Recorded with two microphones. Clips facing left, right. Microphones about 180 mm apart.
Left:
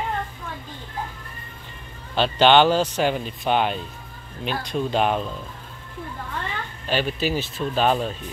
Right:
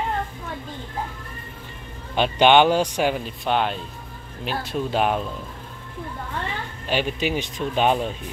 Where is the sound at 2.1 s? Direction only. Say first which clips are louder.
Even; 10° right (ahead or behind).